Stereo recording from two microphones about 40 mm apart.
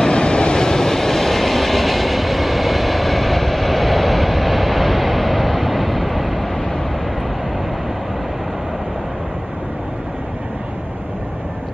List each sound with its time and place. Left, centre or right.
0.0 s vehicle: left; by 6.6 s centre